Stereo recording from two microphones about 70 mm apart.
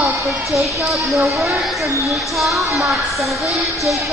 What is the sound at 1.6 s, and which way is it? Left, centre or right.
Speech, centre.